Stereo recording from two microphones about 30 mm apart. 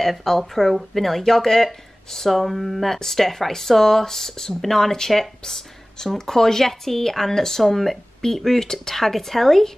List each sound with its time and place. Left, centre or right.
0.2 s speech: centre